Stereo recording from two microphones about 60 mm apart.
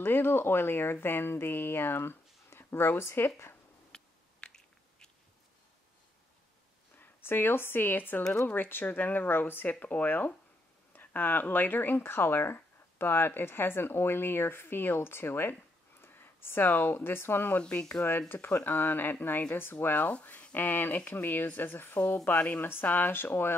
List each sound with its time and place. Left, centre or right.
0.0 s speech: left
3.9 s a sound: centre
7.0 s speech: left
17.6 s speech: centre
18.3 s speech: left